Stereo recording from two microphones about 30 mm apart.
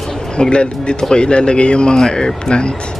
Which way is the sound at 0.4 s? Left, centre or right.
Left.